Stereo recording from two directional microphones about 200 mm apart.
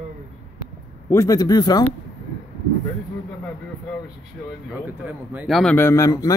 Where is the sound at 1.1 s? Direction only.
15° left (ahead or behind).